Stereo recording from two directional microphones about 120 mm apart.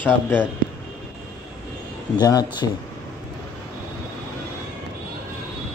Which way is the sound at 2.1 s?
35° left (ahead or behind).